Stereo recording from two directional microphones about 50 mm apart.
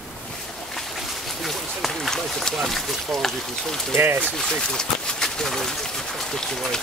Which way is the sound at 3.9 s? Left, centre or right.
Right.